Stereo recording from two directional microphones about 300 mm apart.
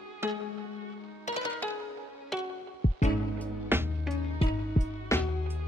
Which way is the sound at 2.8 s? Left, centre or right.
Left.